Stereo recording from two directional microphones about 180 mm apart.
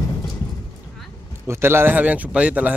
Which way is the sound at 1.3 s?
15° right (ahead or behind).